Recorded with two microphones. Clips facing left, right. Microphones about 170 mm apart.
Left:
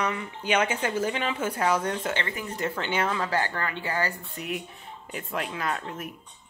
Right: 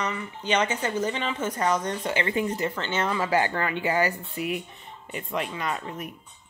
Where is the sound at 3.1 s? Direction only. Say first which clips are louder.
Right 3 dB; 10° right (ahead or behind).